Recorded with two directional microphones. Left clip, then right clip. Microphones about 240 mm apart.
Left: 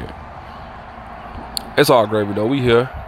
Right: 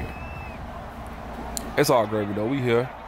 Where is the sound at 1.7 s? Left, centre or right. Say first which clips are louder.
Left 7 dB; centre.